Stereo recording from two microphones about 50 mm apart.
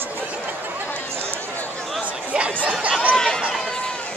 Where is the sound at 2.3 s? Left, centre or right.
Right.